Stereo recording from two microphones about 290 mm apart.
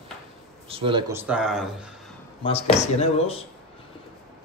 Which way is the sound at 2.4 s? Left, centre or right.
Left.